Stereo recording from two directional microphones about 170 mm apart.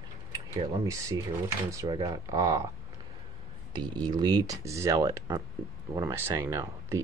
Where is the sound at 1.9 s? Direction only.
20° right (ahead or behind).